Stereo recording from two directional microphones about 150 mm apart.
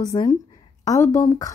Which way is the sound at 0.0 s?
25° left (ahead or behind).